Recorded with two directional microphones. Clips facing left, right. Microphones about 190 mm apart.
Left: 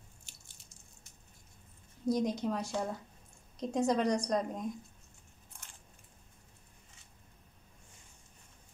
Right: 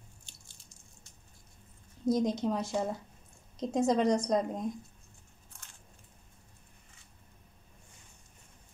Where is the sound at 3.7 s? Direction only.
20° right (ahead or behind).